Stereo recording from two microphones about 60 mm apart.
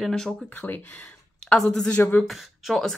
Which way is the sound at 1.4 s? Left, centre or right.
Centre.